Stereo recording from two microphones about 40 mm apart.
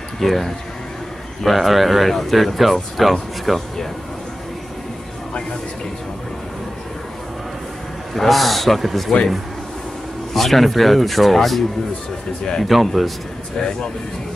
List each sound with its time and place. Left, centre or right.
0.2 s speech: centre
8.1 s speech: centre
10.3 s speech: centre
12.6 s speech: centre
13.6 s speech: centre